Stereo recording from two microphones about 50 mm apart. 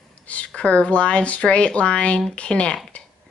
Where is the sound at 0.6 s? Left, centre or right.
Left.